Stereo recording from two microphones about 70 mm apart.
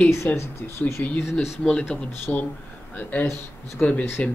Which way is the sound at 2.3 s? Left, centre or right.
Left.